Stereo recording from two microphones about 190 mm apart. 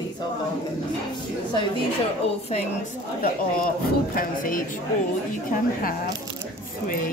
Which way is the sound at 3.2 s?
50° left (ahead or behind).